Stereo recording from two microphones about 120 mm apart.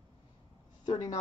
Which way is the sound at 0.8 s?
35° left (ahead or behind).